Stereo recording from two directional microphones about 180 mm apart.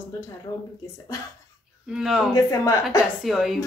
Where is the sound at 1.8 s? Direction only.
5° right (ahead or behind).